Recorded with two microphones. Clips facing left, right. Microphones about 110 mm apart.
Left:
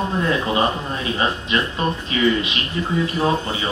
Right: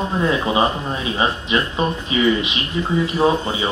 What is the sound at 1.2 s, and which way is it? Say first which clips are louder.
Speech: right 2 dB; 15° right (ahead or behind).